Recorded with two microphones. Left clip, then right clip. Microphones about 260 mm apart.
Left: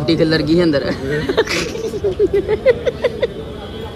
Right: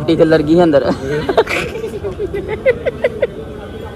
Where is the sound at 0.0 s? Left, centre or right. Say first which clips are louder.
Right 4 dB; centre.